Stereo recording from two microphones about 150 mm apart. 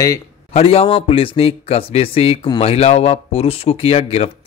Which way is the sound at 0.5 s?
40° left (ahead or behind).